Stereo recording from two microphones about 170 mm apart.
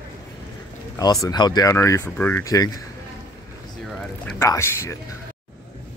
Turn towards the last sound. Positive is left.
turn(degrees=15)  # may be behind; listen again after turning